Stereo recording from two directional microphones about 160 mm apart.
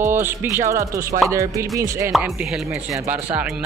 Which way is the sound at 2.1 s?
5° right (ahead or behind).